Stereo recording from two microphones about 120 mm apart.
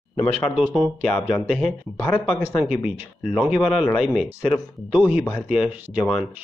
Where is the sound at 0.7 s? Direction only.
5° left (ahead or behind).